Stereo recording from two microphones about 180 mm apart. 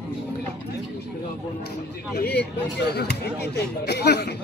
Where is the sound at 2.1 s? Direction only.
65° left (ahead or behind).